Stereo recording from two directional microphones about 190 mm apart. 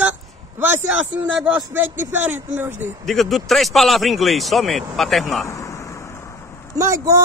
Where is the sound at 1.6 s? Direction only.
10° right (ahead or behind).